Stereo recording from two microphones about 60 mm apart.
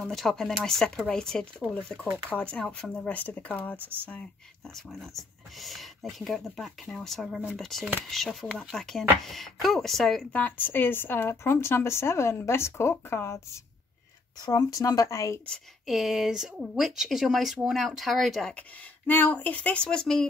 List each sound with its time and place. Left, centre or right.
0.1 s speech: centre
3.1 s speech: left
3.8 s speech: right
4.7 s speech: centre
10.3 s a woman's voice: left
14.5 s speech: left
15.9 s speech: centre
18.5 s speech: left; by 20.2 s centre